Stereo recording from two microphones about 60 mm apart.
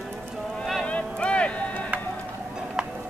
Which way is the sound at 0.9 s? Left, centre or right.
Centre.